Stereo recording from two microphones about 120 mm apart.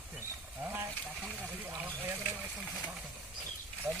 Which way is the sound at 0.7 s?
15° right (ahead or behind).